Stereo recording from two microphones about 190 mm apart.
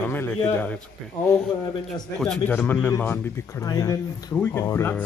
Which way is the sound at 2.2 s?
5° left (ahead or behind).